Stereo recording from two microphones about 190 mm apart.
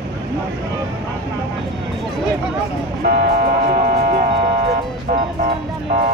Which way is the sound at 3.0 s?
50° right (ahead or behind).